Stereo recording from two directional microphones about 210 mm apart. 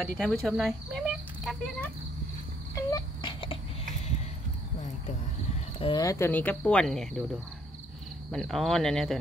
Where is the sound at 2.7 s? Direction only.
20° left (ahead or behind).